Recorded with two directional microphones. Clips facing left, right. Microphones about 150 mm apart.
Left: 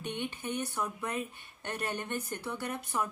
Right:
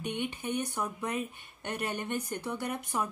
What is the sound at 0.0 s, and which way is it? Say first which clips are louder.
Speech: right 2 dB; 15° right (ahead or behind).